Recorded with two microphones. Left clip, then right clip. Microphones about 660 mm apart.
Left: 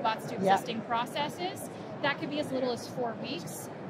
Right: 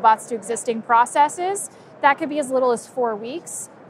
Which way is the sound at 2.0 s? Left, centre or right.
Right.